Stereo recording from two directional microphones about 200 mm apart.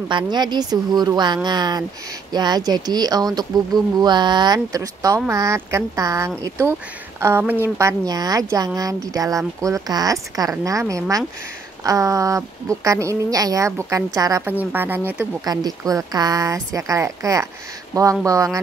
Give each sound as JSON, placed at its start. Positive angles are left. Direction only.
{"t": 0.1, "sound": "a woman's voice", "side_deg": -20}